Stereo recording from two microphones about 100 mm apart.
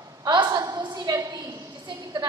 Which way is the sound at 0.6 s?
50° right (ahead or behind).